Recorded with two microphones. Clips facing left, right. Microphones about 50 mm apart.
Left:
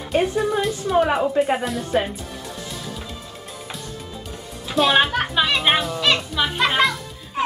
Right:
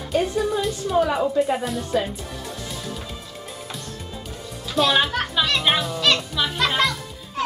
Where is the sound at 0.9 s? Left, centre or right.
Left.